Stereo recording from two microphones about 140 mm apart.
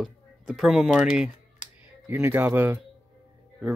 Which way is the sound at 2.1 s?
15° right (ahead or behind).